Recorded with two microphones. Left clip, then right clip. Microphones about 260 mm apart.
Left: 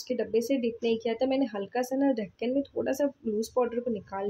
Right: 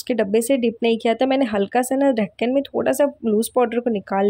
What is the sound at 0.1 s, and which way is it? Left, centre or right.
Speech, right.